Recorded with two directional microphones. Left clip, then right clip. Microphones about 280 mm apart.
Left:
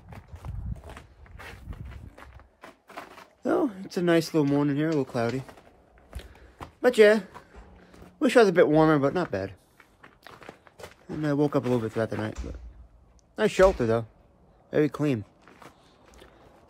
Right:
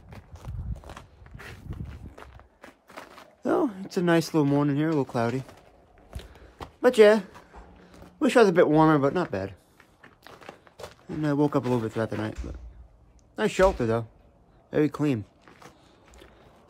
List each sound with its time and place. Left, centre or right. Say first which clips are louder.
2.9 s speech: left 2 dB; centre
6.0 s a sound: right 1 dB; centre
13.4 s speech: left 2 dB; centre
14.7 s biting: even; centre